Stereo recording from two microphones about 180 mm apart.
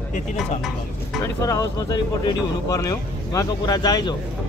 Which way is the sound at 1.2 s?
15° left (ahead or behind).